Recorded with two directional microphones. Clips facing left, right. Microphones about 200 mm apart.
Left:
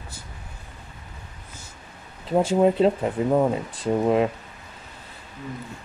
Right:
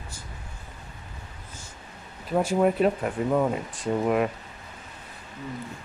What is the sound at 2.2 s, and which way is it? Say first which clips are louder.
Speech: left 3 dB; 25° left (ahead or behind).